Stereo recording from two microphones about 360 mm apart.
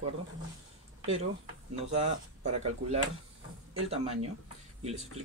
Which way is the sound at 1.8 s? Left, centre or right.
Centre.